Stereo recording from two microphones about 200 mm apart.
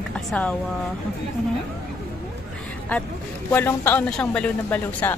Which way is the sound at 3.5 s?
10° left (ahead or behind).